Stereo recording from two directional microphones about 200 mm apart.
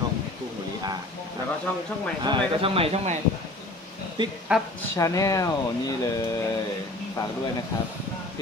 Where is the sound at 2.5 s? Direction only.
30° right (ahead or behind).